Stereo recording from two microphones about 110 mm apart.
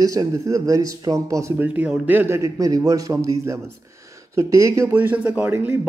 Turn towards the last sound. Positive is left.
turn(degrees=-15)  # may be behind; listen again after turning